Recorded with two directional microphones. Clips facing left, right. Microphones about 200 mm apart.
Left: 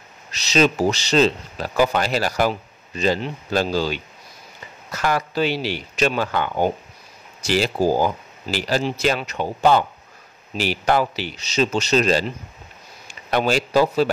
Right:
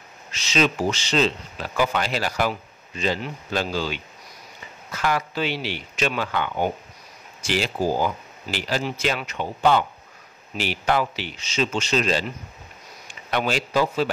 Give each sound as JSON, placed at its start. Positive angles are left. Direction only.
{"t": 0.3, "sound": "speech", "side_deg": 40}
{"t": 13.3, "sound": "speech", "side_deg": 40}